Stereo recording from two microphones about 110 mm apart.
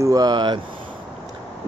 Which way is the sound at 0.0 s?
35° right (ahead or behind).